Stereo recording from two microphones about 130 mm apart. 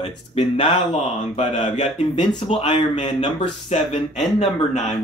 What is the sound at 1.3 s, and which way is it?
Speech, 55° left (ahead or behind).